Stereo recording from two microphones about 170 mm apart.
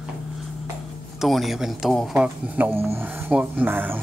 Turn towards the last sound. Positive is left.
turn(degrees=-10)  # may be behind; listen again after turning